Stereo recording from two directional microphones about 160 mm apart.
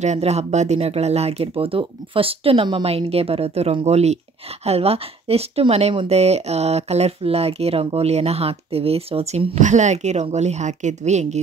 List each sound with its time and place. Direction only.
0.0 s speech: 45° right (ahead or behind)